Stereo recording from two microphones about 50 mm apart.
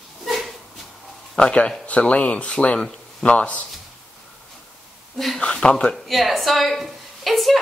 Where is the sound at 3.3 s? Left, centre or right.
Left.